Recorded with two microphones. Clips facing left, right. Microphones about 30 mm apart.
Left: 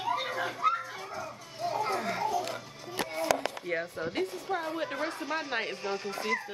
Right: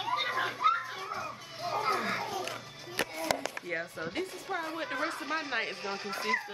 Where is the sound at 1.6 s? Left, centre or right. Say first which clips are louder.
Even; right.